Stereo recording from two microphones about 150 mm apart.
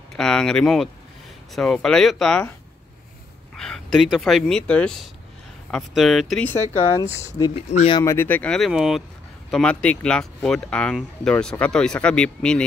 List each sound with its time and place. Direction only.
0.1 s speech: 5° left (ahead or behind)
3.5 s speech: 5° left (ahead or behind)
6.4 s speech: 15° left (ahead or behind)